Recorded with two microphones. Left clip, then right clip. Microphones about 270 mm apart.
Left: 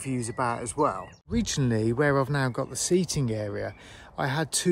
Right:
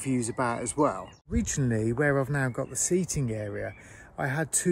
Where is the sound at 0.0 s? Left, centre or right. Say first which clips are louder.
Even; centre.